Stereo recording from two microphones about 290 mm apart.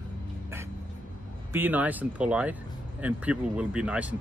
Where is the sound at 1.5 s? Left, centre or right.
Centre.